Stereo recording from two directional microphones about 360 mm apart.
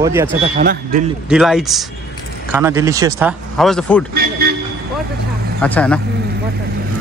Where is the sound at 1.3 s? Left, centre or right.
Centre.